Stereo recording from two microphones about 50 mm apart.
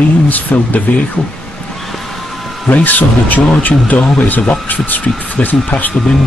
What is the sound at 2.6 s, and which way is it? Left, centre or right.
Speech, left.